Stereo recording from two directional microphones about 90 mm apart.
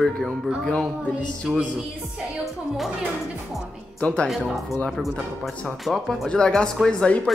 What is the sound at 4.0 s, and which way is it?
Speech, 10° left (ahead or behind).